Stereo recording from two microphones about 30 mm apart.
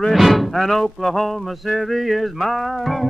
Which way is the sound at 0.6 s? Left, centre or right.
Centre.